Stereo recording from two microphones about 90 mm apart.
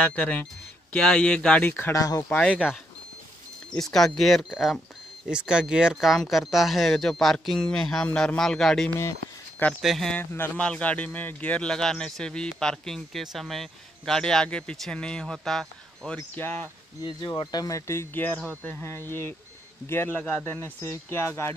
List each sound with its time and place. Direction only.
0.0 s a man's voice: 15° left (ahead or behind)
1.9 s speech: 40° left (ahead or behind)
2.2 s a man's voice: 15° left (ahead or behind)
3.7 s speech: 5° left (ahead or behind)
10.1 s speech: 25° left (ahead or behind)
10.5 s a man's voice: 10° left (ahead or behind)
16.2 s speech: 25° left (ahead or behind)
17.4 s speech: 50° left (ahead or behind); by 21.5 s 30° left (ahead or behind)